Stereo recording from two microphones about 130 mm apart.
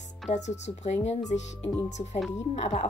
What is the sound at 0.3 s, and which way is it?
Speech, 60° left (ahead or behind).